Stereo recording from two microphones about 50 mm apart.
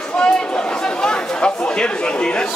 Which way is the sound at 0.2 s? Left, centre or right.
Centre.